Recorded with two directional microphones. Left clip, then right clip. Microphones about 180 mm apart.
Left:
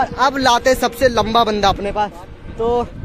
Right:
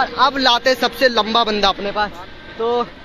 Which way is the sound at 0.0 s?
35° left (ahead or behind).